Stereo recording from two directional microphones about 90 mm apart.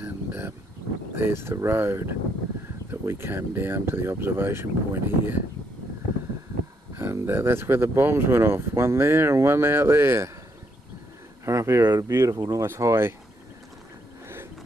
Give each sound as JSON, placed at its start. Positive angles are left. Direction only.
{"t": 0.0, "sound": "a sound", "side_deg": -20}
{"t": 1.1, "sound": "speech", "side_deg": -25}
{"t": 7.2, "sound": "speech", "side_deg": -25}
{"t": 11.4, "sound": "speech", "side_deg": -35}